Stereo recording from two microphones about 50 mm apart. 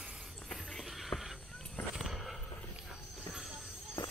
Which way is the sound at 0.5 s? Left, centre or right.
Centre.